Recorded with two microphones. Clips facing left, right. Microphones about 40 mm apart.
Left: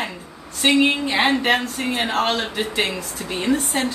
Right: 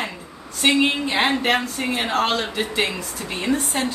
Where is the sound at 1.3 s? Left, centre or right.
Centre.